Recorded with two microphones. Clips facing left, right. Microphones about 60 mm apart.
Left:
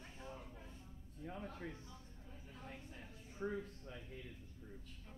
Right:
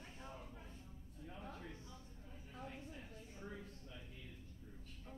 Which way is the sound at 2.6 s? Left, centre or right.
Centre.